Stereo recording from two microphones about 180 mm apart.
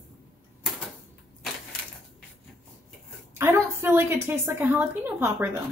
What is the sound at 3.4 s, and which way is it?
A woman's voice, 15° right (ahead or behind).